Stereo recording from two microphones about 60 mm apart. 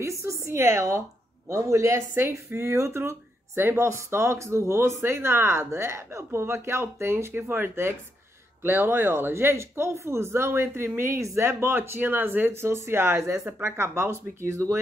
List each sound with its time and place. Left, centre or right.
0.0 s a sound: right
1.5 s speech: right
11.0 s speech: right
12.6 s speech: right